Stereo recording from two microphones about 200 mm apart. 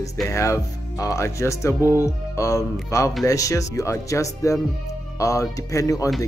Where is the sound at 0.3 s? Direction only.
15° left (ahead or behind).